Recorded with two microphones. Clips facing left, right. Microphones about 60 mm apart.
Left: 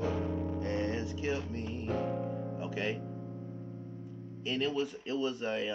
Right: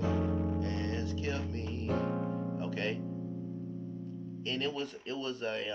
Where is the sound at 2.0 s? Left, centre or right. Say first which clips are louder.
Even; right.